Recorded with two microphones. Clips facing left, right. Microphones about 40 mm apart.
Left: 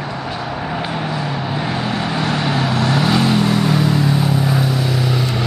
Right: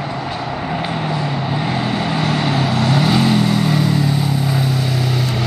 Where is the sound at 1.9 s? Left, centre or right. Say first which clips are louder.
Right 1 dB; centre.